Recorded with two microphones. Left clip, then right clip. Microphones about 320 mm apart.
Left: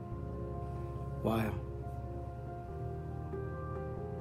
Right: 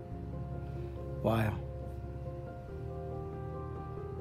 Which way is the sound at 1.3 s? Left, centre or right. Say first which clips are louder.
Right 2 dB; right.